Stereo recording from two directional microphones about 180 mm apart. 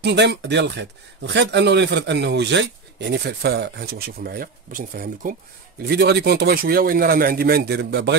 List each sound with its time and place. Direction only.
0.0 s speech: 70° right (ahead or behind); by 5.3 s 50° right (ahead or behind)
5.8 s a man's voice: 65° right (ahead or behind)